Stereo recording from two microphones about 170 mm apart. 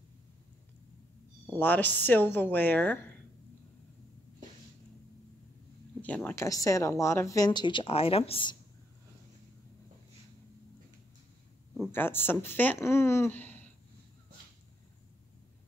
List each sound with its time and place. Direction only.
1.6 s speech: 10° left (ahead or behind)
5.9 s speech: 10° left (ahead or behind); by 8.5 s 30° left (ahead or behind)
11.9 s speech: 15° left (ahead or behind)